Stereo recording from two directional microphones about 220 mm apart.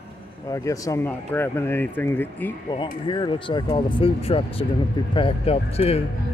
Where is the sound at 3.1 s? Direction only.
20° left (ahead or behind).